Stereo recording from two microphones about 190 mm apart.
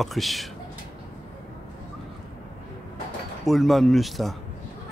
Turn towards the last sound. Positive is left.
turn(degrees=0)  # may be behind; listen again after turning